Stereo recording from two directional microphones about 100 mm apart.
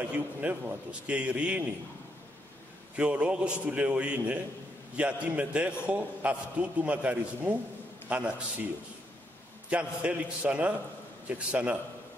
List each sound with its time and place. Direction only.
0.0 s a man's voice: 15° right (ahead or behind)
3.0 s a man's voice: 10° right (ahead or behind)
9.7 s a man's voice: 10° right (ahead or behind)